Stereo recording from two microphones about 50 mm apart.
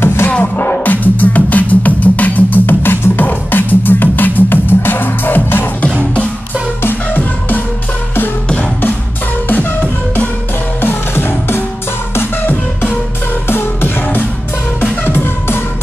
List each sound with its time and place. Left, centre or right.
0.0 s music: left
0.4 s music: left
6.8 s music: left
9.5 s music: left
13.5 s music: left